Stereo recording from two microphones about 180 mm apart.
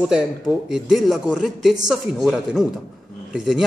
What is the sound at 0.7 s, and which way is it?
Speech, 5° right (ahead or behind).